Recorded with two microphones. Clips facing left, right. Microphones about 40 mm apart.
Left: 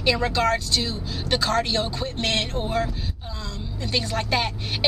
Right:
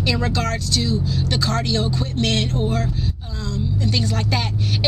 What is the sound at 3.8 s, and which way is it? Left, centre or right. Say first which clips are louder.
Speech: even; centre.